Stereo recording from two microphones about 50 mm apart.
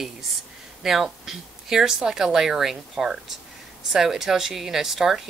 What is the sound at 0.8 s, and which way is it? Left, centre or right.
Speech, centre.